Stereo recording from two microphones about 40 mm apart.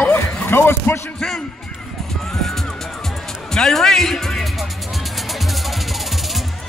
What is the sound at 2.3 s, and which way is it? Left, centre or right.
Music, centre.